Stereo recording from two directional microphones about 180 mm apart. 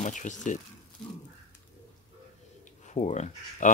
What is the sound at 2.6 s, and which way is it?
Speech, 40° left (ahead or behind).